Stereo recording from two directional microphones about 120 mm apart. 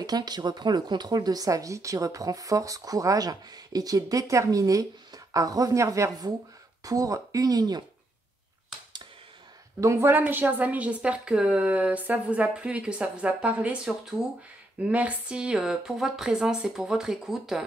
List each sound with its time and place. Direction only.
0.0 s speech: 35° right (ahead or behind)
9.8 s a woman's voice: 25° right (ahead or behind); by 17.6 s 5° right (ahead or behind)